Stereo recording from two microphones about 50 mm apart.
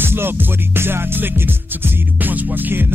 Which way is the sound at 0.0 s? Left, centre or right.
Right.